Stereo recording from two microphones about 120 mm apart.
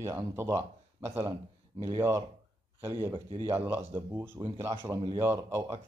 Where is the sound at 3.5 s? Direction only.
15° right (ahead or behind).